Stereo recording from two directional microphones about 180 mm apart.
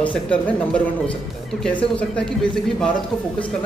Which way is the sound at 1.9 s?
5° left (ahead or behind).